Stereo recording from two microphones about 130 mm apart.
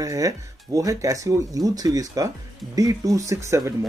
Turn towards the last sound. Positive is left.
turn(degrees=-20)  # may be behind; listen again after turning